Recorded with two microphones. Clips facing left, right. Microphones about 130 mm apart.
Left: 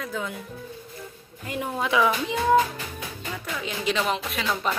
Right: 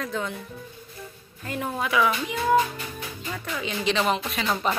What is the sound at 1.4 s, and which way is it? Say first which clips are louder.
Speech: even; 15° left (ahead or behind).